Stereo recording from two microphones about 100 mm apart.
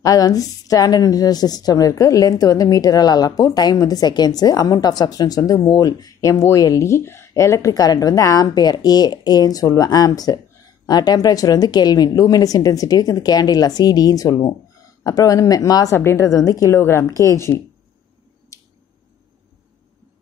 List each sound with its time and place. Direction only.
0.0 s a woman's voice: 35° left (ahead or behind)
6.3 s a woman's voice: 30° left (ahead or behind)
18.5 s squish: 30° left (ahead or behind)